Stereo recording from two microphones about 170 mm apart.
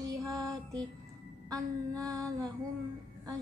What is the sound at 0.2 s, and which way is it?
Music, 20° right (ahead or behind).